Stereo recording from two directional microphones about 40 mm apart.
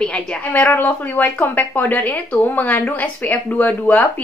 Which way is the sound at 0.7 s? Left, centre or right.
Left.